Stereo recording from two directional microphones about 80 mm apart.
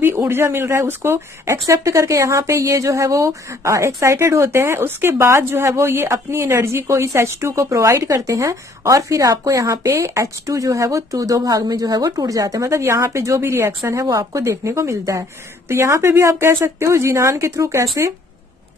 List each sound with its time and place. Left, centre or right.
0.0 s speech: right
13.8 s speech: right